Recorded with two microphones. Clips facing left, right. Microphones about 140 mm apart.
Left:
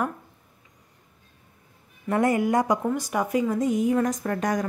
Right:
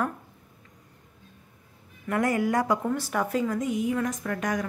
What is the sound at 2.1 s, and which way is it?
A woman's voice, 25° left (ahead or behind).